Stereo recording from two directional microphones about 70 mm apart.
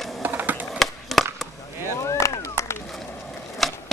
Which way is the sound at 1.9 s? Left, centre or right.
Left.